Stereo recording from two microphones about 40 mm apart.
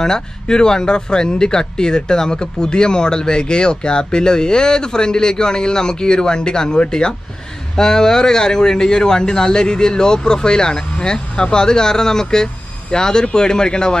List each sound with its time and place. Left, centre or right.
0.0 s speech: centre